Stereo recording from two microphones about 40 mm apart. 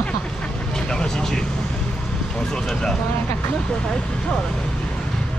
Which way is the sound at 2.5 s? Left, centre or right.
Centre.